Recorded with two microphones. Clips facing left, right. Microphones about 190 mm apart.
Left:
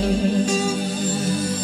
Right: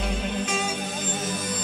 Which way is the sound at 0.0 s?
35° left (ahead or behind).